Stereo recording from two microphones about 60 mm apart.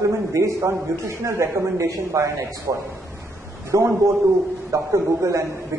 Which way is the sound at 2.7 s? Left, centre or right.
Right.